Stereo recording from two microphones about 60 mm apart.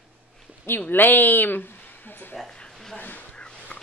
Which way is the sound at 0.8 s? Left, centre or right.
Left.